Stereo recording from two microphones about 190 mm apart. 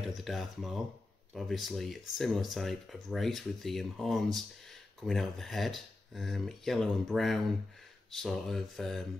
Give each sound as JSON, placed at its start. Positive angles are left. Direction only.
{"t": 0.0, "sound": "speech", "side_deg": 0}